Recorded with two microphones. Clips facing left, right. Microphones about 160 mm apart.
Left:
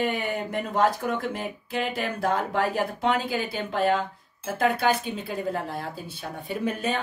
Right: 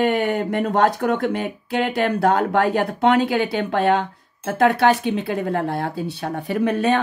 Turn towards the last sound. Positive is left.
turn(degrees=-70)  # may be behind; listen again after turning